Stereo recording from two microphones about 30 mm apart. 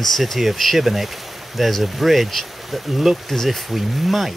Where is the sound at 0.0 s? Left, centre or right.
Centre.